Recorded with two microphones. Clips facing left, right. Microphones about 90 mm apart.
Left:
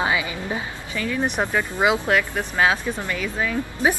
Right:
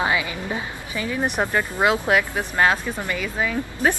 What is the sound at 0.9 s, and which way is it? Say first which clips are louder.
Speech: left 1 dB; 20° right (ahead or behind).